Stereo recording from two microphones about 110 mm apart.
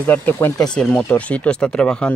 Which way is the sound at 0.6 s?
5° left (ahead or behind).